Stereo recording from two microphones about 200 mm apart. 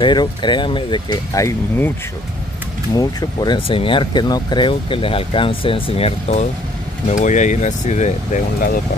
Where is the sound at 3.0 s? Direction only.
20° left (ahead or behind); by 8.4 s 35° left (ahead or behind).